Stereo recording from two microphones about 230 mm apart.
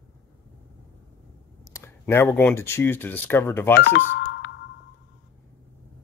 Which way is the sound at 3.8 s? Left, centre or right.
Left.